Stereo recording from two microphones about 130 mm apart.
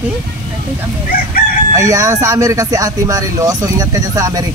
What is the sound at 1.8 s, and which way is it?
Speech, 25° right (ahead or behind).